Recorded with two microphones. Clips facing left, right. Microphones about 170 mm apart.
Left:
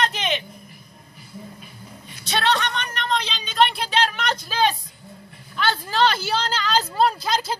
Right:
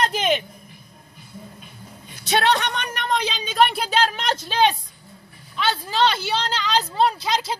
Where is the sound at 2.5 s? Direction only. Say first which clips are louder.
Right 1 dB; 15° right (ahead or behind).